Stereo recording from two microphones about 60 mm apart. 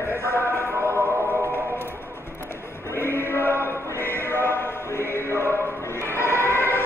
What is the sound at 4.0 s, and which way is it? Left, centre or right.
Music, left.